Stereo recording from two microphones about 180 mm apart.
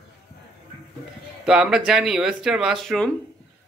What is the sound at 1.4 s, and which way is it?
Speech, 5° right (ahead or behind).